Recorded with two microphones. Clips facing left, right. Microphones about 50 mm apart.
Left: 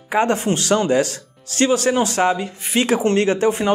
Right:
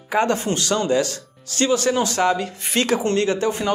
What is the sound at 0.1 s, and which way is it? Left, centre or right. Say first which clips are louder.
Speech: left 2 dB; left.